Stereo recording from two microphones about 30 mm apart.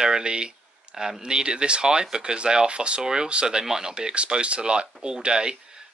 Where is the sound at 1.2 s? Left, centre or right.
Right.